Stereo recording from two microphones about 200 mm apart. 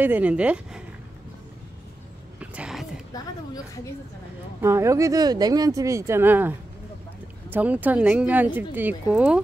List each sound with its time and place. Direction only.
0.0 s speech: 10° right (ahead or behind)
2.4 s a sound: 5° right (ahead or behind)
4.6 s speech: 15° right (ahead or behind)